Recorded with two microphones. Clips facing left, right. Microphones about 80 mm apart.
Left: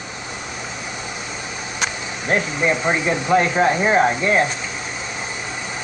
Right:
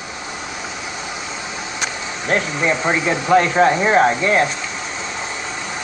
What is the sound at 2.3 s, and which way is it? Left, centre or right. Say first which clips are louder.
Speech: right 1 dB; centre.